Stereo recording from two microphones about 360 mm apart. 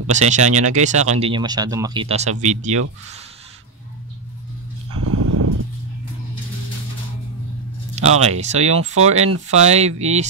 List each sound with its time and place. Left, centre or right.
0.1 s speech: centre
4.9 s a sound: right
7.9 s speech: centre
8.7 s speech: right
9.5 s speech: centre